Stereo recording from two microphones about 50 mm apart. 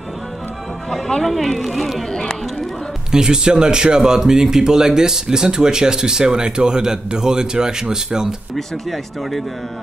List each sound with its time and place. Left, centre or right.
0.8 s speech: centre
3.1 s speech: centre
8.5 s speech: centre